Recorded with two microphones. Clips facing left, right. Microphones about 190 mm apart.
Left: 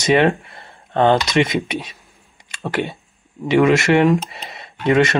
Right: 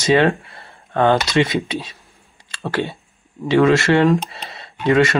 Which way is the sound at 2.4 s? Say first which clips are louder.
Even; 15° left (ahead or behind).